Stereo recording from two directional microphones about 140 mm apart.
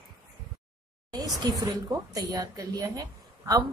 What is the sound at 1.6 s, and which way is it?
A woman's voice, 25° right (ahead or behind).